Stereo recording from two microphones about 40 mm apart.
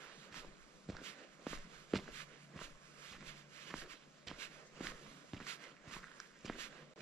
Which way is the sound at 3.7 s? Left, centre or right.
Centre.